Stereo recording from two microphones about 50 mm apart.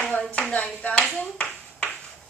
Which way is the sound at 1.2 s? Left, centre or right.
Left.